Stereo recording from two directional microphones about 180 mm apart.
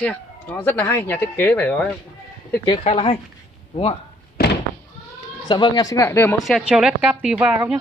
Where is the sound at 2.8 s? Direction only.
35° left (ahead or behind).